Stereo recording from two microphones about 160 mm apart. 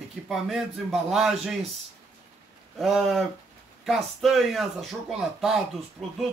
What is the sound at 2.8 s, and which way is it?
Speech, centre (ahead or behind).